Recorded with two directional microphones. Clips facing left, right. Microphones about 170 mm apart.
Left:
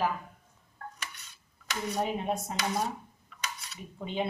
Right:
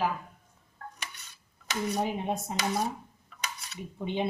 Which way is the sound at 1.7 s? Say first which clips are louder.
Right 1 dB; 20° right (ahead or behind).